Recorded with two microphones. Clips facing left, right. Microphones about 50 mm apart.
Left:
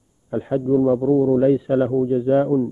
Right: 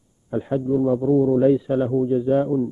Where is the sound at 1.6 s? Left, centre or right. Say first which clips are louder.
Left 2 dB; centre.